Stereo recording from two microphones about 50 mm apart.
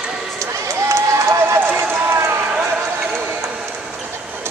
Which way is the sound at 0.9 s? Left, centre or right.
Right.